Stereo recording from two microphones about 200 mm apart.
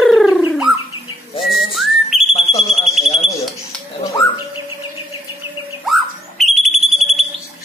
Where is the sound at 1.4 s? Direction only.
Centre (ahead or behind).